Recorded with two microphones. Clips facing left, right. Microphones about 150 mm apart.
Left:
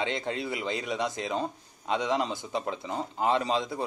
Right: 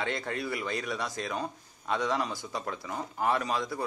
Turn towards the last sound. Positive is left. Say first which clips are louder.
# left 3 dB
turn(degrees=20)  # may be behind; listen again after turning